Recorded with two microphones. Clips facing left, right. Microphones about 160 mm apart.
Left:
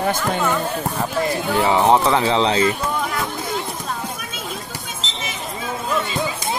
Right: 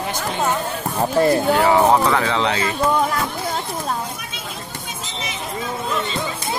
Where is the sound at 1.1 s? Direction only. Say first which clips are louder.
Right 8 dB; 40° right (ahead or behind).